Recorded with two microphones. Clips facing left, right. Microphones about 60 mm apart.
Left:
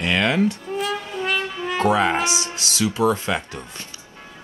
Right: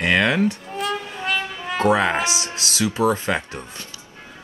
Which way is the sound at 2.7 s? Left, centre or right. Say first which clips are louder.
Even; right.